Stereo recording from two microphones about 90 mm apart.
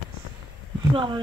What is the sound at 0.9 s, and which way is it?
Speech, 65° right (ahead or behind).